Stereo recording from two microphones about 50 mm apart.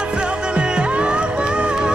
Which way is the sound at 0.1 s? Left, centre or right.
Centre.